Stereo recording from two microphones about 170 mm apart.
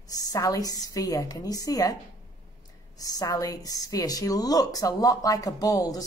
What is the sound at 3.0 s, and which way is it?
A woman's voice, 20° left (ahead or behind).